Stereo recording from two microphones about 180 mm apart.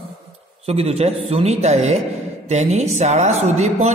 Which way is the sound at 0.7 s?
35° right (ahead or behind).